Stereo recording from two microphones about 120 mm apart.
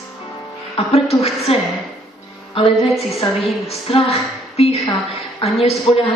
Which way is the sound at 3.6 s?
55° left (ahead or behind).